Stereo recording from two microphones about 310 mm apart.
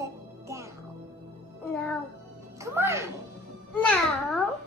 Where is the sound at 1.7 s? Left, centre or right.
Centre.